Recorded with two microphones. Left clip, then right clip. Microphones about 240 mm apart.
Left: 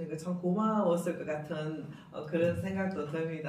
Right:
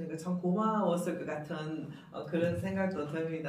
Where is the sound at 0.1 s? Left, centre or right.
Centre.